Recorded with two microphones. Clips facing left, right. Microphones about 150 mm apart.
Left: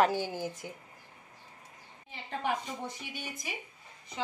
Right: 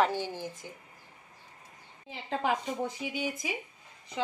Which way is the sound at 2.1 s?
90° right.